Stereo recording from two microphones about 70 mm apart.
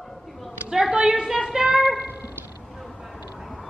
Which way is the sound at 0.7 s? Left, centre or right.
Centre.